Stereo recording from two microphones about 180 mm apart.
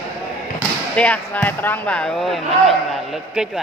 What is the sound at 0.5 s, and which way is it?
Speech, 5° left (ahead or behind).